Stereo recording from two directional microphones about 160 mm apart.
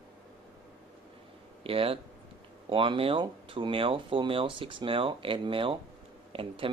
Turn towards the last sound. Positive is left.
turn(degrees=-35)  # may be behind; listen again after turning